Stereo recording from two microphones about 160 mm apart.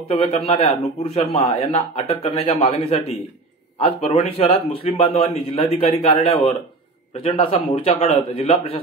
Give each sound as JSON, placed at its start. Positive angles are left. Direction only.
{"t": 0.1, "sound": "a man's voice", "side_deg": 40}